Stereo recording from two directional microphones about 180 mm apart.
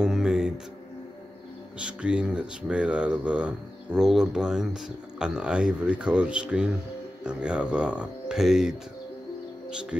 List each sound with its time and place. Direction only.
0.0 s music: 5° right (ahead or behind)
1.8 s speech: 5° right (ahead or behind)